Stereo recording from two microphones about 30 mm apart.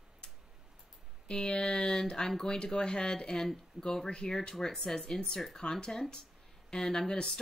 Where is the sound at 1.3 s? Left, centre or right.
Left.